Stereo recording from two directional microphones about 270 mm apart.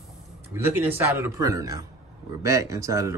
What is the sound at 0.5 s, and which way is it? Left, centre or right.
A man's voice, centre.